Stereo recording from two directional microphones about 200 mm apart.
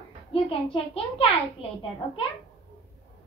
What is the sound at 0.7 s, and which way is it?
A child's voice, 30° left (ahead or behind).